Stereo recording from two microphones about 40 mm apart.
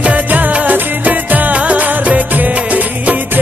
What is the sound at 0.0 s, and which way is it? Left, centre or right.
Music of bollywood, right.